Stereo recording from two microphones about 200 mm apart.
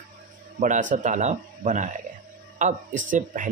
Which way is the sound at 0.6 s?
40° right (ahead or behind).